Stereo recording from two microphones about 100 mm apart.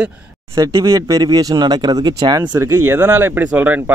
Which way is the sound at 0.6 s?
30° right (ahead or behind).